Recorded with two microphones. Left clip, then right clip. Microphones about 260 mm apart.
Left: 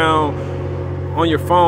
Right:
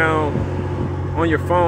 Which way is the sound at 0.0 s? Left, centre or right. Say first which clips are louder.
Left 3 dB; centre.